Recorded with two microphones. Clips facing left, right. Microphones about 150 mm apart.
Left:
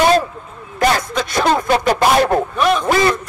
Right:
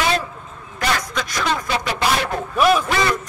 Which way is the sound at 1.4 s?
50° left (ahead or behind).